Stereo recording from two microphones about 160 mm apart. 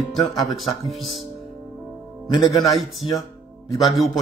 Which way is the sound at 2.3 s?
25° left (ahead or behind).